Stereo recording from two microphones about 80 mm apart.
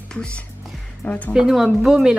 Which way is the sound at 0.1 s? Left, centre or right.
Centre.